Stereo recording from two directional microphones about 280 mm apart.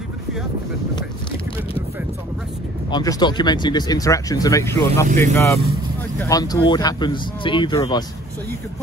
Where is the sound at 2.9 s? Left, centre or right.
Centre.